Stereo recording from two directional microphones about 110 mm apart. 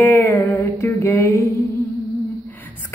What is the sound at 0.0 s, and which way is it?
Music, 25° left (ahead or behind).